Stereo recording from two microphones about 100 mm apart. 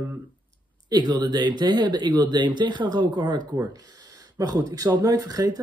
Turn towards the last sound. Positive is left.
turn(degrees=-40)  # may be behind; listen again after turning